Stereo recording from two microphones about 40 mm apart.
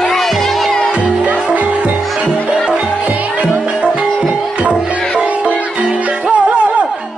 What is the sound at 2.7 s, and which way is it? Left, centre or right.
Music, right.